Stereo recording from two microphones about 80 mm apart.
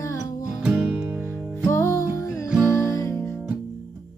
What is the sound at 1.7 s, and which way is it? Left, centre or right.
Music, left.